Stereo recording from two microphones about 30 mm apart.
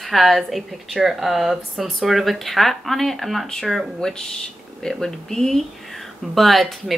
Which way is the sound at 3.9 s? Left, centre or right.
Left.